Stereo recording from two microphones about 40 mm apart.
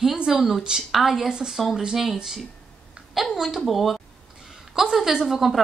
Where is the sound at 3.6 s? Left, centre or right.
Centre.